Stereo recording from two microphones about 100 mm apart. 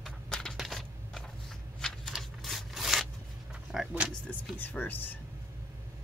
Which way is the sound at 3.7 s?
5° right (ahead or behind).